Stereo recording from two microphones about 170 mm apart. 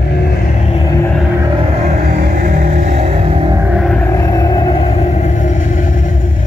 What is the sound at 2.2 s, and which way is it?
Vehicle, 45° right (ahead or behind).